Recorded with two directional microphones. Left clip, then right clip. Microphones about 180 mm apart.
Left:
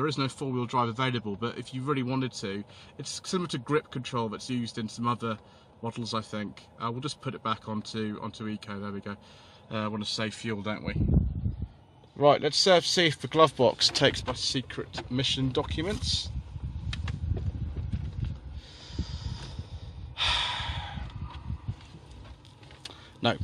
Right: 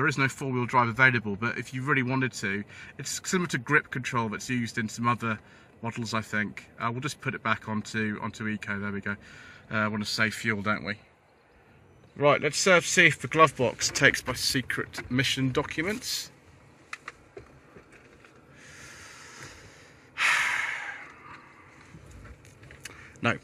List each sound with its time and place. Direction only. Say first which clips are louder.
0.0 s speech: right 4 dB; 5° right (ahead or behind)
12.2 s speech: left 1 dB; 20° left (ahead or behind)
14.2 s speech: right 2 dB; centre (ahead or behind)
18.8 s vehicle: left 3 dB; 10° left (ahead or behind)
20.2 s a sound: right 4 dB; 10° left (ahead or behind)
22.8 s a sound: even; 15° left (ahead or behind)